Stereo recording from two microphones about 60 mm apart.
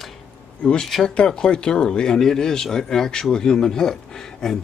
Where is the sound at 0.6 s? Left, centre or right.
Centre.